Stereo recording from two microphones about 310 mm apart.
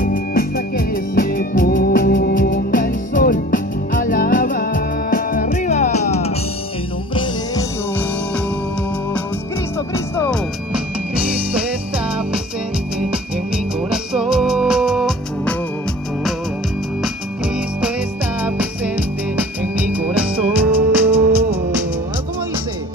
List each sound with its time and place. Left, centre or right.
0.0 s music: left
9.9 s music: centre
13.8 s music: centre
18.4 s music: centre